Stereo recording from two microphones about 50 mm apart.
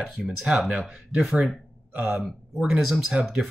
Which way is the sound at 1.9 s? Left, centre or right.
Right.